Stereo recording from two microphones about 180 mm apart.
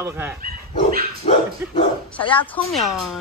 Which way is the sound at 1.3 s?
35° left (ahead or behind).